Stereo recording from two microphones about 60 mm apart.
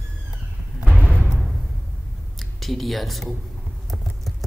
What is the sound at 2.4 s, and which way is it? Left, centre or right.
Speech, centre.